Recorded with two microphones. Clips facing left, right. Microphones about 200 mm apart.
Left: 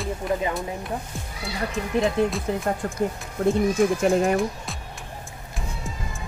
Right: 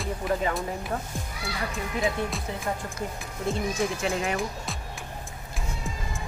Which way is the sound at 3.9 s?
45° left (ahead or behind).